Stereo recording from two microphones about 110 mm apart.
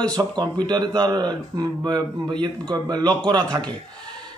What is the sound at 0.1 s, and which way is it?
Speech, 40° right (ahead or behind).